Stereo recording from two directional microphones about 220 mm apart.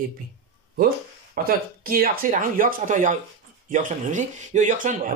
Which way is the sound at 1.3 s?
40° right (ahead or behind).